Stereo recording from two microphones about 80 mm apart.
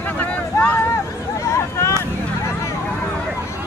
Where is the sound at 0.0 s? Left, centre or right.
Left.